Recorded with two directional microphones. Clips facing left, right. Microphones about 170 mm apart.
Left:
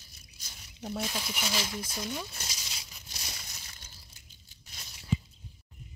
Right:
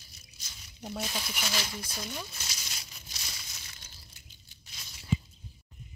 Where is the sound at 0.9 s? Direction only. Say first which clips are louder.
Left 2 dB; centre (ahead or behind).